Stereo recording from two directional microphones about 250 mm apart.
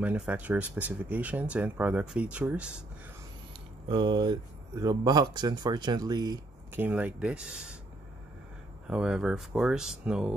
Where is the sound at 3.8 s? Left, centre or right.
Centre.